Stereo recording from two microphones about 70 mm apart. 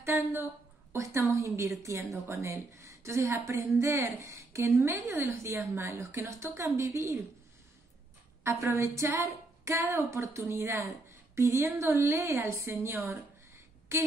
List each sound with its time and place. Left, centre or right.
0.0 s a woman's voice: right
8.5 s a woman's voice: right